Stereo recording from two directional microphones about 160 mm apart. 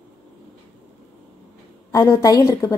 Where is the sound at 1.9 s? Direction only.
20° left (ahead or behind).